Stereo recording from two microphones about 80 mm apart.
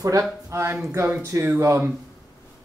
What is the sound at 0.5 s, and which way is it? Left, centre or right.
Speech, right.